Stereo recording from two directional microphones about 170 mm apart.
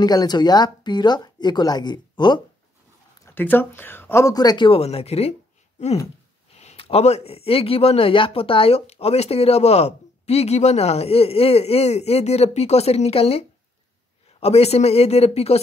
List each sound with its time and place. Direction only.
0.0 s speech: 25° left (ahead or behind)
3.3 s speech: 10° left (ahead or behind); by 5.3 s 35° left (ahead or behind)
6.6 s speech: 40° left (ahead or behind)